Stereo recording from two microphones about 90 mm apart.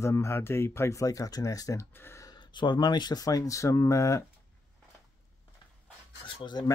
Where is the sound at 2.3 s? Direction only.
55° left (ahead or behind); by 4.2 s 35° left (ahead or behind).